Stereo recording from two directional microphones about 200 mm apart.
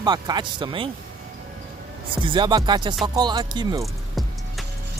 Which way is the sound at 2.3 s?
25° right (ahead or behind).